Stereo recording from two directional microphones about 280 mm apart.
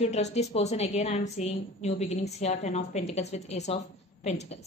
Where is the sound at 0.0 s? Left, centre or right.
Left.